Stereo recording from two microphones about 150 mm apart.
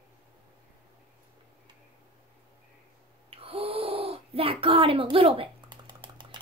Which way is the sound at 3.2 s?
40° right (ahead or behind).